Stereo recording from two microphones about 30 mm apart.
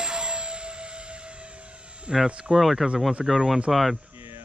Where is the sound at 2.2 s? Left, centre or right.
Right.